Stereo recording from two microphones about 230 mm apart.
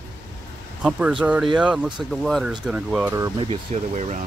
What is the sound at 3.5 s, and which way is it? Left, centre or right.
Speech, right.